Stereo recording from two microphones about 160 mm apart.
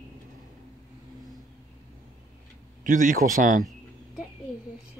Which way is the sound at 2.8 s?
55° right (ahead or behind).